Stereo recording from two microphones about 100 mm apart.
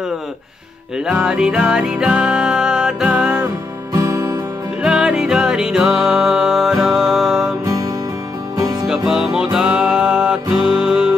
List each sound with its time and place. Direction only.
0.9 s music: 5° right (ahead or behind)
3.9 s music: 35° right (ahead or behind)
4.8 s music: 5° right (ahead or behind)
7.6 s music: 35° right (ahead or behind)
8.8 s music: 5° right (ahead or behind)